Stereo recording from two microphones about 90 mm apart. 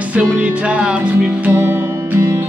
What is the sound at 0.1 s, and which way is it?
Music, 15° right (ahead or behind).